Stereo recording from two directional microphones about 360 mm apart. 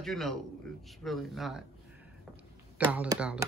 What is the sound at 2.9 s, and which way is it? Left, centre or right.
Speech, centre.